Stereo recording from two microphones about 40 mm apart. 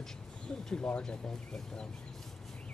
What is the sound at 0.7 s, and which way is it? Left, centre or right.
Speech, left.